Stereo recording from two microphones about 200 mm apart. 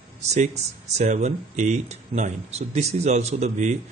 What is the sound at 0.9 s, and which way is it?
A man's voice, 35° right (ahead or behind).